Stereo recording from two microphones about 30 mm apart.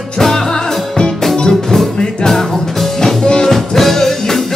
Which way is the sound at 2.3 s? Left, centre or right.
Centre.